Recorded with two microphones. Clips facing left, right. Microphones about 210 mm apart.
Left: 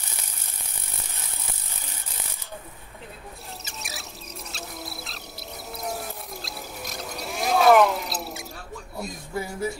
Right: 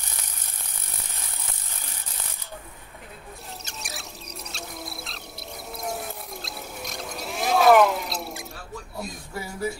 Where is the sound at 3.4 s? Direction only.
Centre (ahead or behind).